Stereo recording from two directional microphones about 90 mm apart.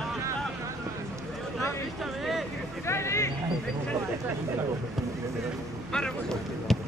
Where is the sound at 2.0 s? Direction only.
Centre (ahead or behind).